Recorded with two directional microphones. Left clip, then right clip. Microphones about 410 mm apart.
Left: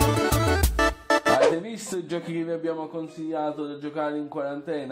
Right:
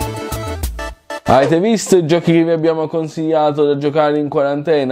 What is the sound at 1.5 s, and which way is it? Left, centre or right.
A man's voice, right.